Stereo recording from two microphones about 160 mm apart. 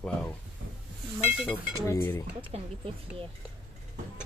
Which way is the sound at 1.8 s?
15° left (ahead or behind).